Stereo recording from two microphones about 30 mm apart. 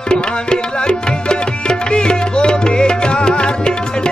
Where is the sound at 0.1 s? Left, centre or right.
Left.